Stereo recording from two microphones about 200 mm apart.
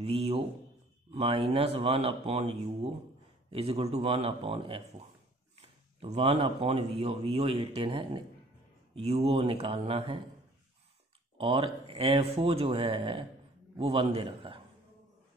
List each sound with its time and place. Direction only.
0.0 s a man's voice: 30° right (ahead or behind)
11.3 s speech: 25° right (ahead or behind)